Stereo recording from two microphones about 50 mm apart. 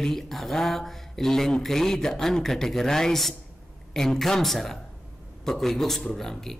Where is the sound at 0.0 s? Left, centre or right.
Centre.